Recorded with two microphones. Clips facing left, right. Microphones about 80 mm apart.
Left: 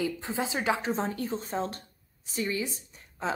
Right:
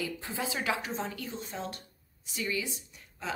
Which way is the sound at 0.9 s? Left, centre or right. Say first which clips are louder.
Left 5 dB; left.